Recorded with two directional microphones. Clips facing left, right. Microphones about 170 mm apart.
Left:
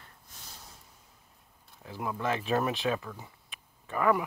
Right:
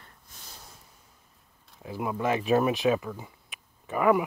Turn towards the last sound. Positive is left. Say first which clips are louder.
# right 4 dB
turn(degrees=-15)  # may be behind; listen again after turning